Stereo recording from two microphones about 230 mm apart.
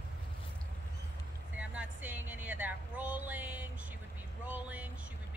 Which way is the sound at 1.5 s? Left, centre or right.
Centre.